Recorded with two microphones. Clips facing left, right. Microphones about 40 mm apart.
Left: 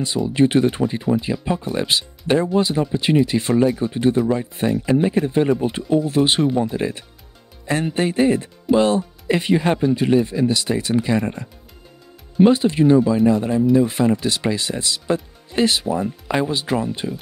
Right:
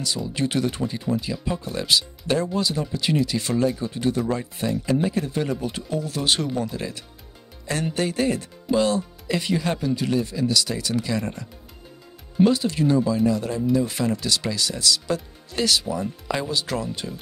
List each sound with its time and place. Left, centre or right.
0.0 s speech: left